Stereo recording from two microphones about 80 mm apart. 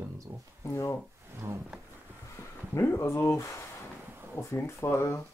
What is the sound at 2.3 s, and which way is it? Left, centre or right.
Speech, left.